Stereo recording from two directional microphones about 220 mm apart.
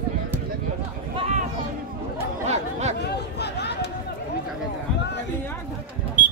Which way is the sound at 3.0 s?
50° left (ahead or behind).